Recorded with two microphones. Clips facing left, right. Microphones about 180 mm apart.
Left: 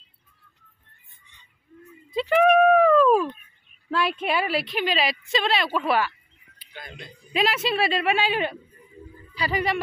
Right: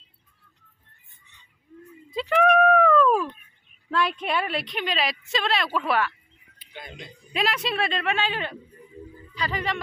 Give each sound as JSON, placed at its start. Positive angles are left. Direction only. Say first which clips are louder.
{"t": 2.0, "sound": "a sound", "louder": "left 2 dB", "side_deg": 0}
{"t": 3.9, "sound": "a woman's voice", "louder": "left 1 dB", "side_deg": 5}
{"t": 6.7, "sound": "speech", "louder": "right 1 dB", "side_deg": -20}
{"t": 7.3, "sound": "a woman's voice", "louder": "left 3 dB", "side_deg": 0}